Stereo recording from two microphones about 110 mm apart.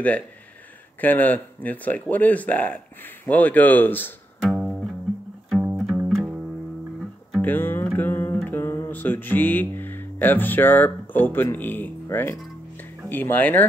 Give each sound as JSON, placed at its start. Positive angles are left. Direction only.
{"t": 1.0, "sound": "speech", "side_deg": 15}
{"t": 4.4, "sound": "music", "side_deg": 0}
{"t": 7.4, "sound": "music", "side_deg": 20}